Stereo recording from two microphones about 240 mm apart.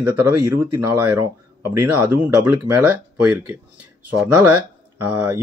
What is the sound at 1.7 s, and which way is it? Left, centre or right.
Speech, right.